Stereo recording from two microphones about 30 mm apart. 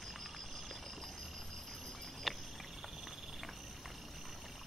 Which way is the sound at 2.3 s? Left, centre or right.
Centre.